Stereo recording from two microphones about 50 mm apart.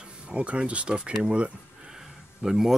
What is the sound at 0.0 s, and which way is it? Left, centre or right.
Speech, right.